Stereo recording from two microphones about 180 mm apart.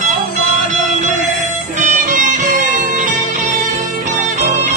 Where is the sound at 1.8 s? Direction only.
45° right (ahead or behind).